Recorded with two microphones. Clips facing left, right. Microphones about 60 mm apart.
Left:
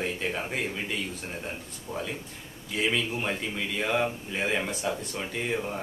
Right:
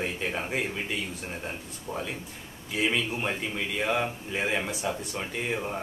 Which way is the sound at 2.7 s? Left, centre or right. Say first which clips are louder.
Even; centre.